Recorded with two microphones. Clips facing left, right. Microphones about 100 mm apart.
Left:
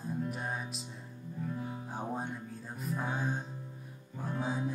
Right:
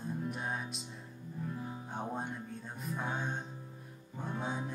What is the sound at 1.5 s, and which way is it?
Music, centre (ahead or behind).